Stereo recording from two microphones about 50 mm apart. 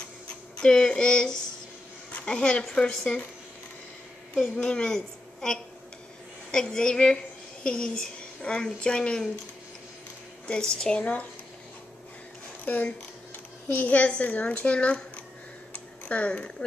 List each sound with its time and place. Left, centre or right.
0.6 s speech: centre
4.4 s a woman's voice: centre
10.4 s speech: centre
13.7 s speech: left
15.7 s a sound: left